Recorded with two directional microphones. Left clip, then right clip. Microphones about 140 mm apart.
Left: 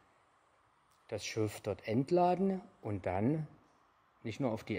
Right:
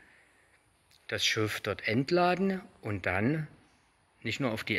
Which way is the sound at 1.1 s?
15° left (ahead or behind).